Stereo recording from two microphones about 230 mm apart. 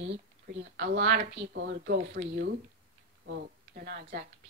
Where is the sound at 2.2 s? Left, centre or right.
Right.